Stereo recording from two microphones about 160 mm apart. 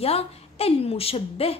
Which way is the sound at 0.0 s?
40° left (ahead or behind).